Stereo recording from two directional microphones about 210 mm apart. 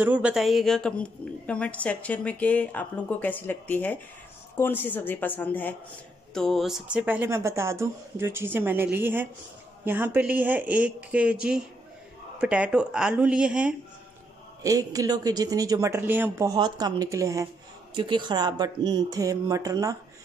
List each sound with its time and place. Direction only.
0.0 s speech: 5° right (ahead or behind)
14.6 s speech: 15° right (ahead or behind)